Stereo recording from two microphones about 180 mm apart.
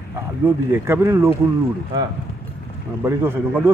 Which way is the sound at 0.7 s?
10° right (ahead or behind).